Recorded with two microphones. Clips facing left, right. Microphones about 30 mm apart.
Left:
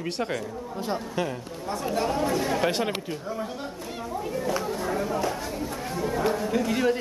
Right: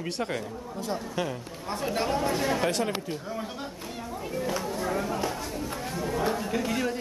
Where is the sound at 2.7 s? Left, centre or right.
Left.